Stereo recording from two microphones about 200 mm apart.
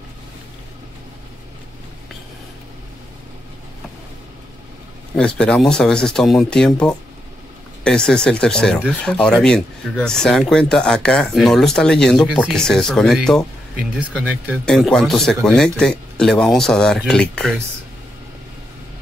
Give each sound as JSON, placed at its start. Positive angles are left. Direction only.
{"t": 5.1, "sound": "speech", "side_deg": 5}